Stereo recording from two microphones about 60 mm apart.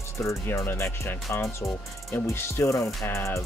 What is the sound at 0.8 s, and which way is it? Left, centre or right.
Music, left.